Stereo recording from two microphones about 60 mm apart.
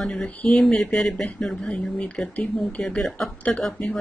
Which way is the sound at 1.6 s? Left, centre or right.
Left.